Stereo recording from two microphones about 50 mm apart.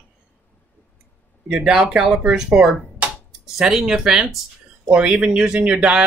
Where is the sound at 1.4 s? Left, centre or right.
Centre.